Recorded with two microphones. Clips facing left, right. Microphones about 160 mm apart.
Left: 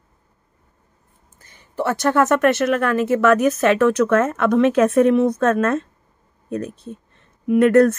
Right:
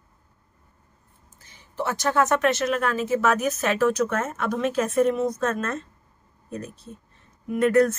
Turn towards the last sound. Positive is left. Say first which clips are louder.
# left 6 dB
turn(degrees=60)  # may be behind; listen again after turning